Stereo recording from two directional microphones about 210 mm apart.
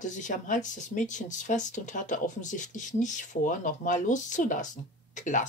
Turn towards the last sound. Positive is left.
turn(degrees=35)  # may be behind; listen again after turning